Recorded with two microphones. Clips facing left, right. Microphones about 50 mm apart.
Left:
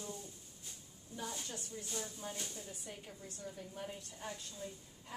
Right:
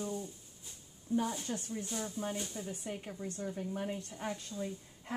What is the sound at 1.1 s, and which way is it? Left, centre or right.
Speech, right.